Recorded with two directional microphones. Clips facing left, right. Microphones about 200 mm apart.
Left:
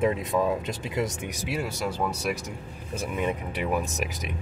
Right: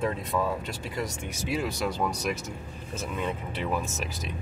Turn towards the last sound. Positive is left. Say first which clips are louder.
# left 3 dB
turn(degrees=15)  # may be behind; listen again after turning